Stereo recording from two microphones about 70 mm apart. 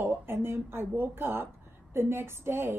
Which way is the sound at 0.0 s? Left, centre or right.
Right.